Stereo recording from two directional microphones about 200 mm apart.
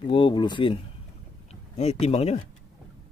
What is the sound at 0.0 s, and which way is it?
Speech, 25° left (ahead or behind).